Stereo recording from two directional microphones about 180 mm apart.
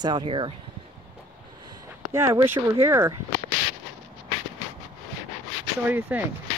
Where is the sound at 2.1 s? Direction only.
15° right (ahead or behind).